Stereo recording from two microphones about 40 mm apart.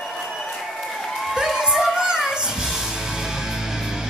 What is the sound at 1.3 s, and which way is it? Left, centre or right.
Crowd, centre.